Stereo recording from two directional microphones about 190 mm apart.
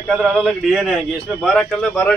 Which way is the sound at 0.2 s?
Centre (ahead or behind).